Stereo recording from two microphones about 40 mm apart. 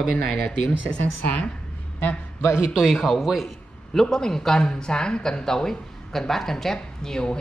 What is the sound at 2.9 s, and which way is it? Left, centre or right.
Speech, centre.